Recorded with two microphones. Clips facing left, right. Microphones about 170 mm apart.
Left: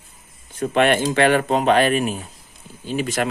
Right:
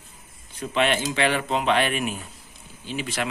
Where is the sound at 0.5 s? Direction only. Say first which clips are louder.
Left 6 dB; 50° left (ahead or behind).